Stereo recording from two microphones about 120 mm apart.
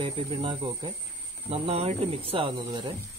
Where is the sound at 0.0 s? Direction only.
45° right (ahead or behind).